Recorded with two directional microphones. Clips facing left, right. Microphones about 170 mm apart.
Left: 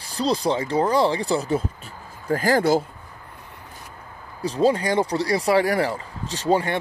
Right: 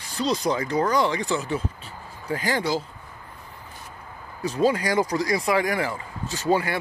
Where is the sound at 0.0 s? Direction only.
35° left (ahead or behind).